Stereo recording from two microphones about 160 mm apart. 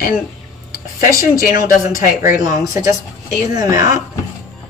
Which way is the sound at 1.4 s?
65° left (ahead or behind).